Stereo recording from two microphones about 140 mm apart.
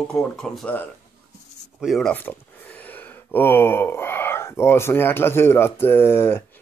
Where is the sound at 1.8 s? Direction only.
Centre (ahead or behind).